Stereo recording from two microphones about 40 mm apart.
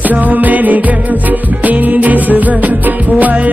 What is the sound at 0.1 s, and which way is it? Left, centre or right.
Music, right.